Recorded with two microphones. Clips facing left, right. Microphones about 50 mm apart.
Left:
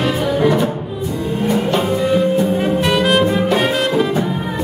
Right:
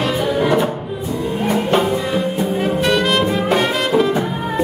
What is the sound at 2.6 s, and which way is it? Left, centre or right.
Music, centre.